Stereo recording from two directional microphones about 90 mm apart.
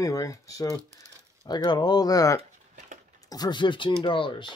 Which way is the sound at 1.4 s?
50° left (ahead or behind).